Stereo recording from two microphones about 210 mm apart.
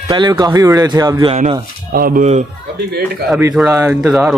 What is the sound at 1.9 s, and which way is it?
Speech, 40° right (ahead or behind).